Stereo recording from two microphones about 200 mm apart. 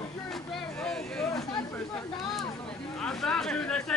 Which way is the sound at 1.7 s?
5° left (ahead or behind).